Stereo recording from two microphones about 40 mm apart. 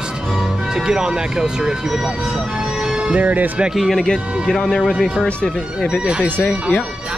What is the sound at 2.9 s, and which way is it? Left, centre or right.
Music, right.